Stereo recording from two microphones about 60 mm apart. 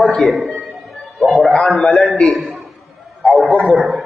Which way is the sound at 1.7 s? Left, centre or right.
Centre.